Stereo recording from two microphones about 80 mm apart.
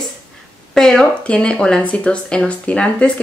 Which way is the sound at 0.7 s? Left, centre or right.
Centre.